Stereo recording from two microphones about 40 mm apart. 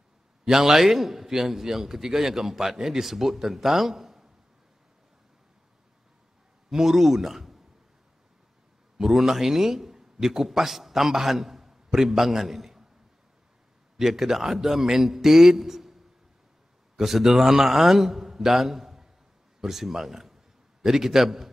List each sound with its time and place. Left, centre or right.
0.5 s a man's voice: centre
6.7 s a man's voice: centre
7.2 s a sound: centre
8.9 s a man's voice: centre
13.9 s a man's voice: centre